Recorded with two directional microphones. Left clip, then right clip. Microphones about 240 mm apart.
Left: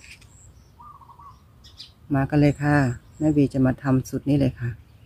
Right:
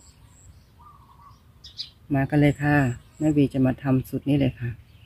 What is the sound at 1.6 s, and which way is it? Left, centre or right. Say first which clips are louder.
Chirp: right 7 dB; left.